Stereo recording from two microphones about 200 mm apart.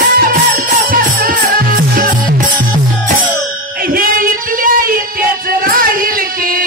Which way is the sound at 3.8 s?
45° right (ahead or behind).